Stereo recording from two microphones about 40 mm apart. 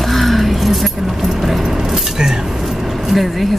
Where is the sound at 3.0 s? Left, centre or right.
Centre.